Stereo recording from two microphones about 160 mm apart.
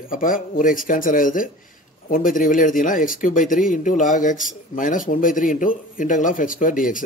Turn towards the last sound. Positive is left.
turn(degrees=55)  # may be behind; listen again after turning